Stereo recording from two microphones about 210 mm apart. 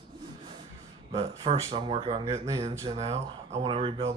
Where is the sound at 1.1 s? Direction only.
30° right (ahead or behind).